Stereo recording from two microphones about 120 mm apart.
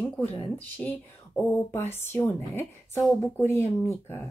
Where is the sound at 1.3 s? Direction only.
5° right (ahead or behind).